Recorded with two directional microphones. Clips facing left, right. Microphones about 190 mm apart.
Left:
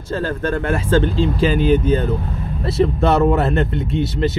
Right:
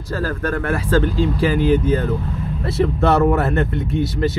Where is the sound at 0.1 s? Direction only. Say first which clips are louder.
Left 1 dB; 25° left (ahead or behind).